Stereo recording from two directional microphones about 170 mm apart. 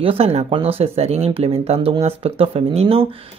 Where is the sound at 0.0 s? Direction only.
35° right (ahead or behind).